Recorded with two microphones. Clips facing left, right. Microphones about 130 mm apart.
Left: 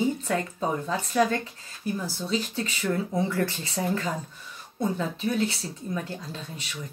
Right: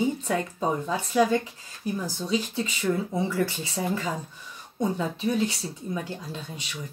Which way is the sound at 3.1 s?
5° right (ahead or behind).